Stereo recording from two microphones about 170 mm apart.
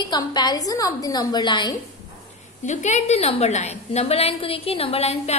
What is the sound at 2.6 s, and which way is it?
A woman's voice, 45° left (ahead or behind).